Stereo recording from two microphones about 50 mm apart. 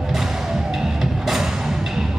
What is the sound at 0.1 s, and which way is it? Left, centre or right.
Music, centre.